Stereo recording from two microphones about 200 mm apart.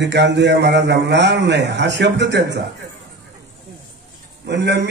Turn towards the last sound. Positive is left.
turn(degrees=-60)  # may be behind; listen again after turning